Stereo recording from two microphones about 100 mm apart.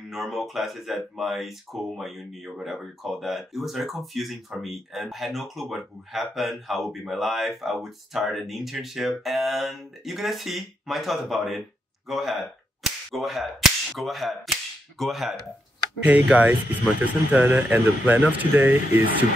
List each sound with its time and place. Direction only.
0.1 s speech: centre (ahead or behind)
16.0 s speech: 15° right (ahead or behind)